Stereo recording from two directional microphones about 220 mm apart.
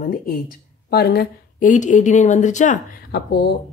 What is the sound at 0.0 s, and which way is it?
Speech, 40° left (ahead or behind).